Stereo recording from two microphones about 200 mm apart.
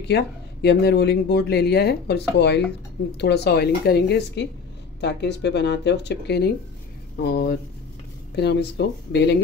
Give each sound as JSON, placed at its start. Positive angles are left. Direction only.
{"t": 0.1, "sound": "speech", "side_deg": 55}